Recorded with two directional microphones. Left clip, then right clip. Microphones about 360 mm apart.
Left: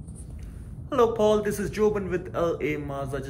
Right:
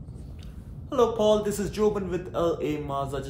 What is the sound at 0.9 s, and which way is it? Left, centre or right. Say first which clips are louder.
Speech: left 1 dB; centre.